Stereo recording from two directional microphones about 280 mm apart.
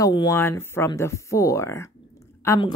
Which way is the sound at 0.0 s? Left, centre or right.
Centre.